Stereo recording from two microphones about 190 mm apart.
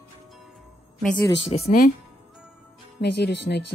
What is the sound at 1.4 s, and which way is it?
Speech, 30° left (ahead or behind).